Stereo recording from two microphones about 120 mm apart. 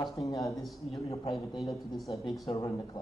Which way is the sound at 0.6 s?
Centre (ahead or behind).